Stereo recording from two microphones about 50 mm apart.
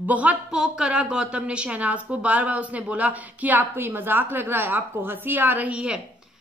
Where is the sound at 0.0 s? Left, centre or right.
Right.